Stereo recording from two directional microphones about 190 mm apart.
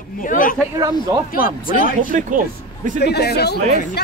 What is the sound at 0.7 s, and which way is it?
Speech, 20° right (ahead or behind).